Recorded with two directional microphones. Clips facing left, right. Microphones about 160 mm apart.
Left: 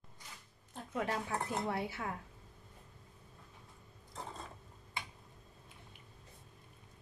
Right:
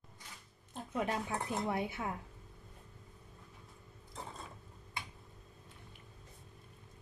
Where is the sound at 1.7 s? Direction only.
20° right (ahead or behind).